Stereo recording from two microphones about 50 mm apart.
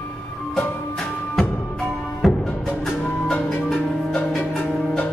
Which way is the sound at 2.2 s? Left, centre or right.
Centre.